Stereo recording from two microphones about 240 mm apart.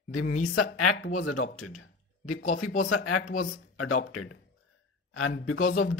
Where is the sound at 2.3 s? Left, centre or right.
Left.